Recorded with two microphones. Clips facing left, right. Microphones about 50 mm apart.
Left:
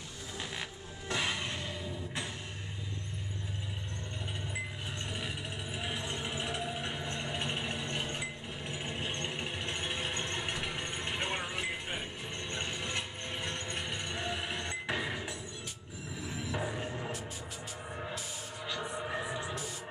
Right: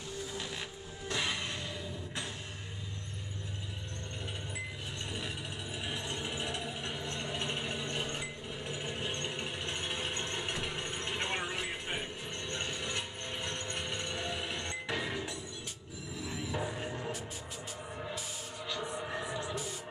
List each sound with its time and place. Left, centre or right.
1.0 s music: left
5.1 s vehicle: centre
12.4 s music: left
18.7 s music: centre